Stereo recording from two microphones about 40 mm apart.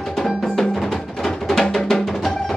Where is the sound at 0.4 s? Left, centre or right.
Centre.